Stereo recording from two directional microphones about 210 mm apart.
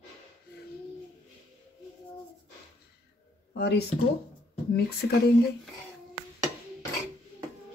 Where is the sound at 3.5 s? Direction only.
50° left (ahead or behind).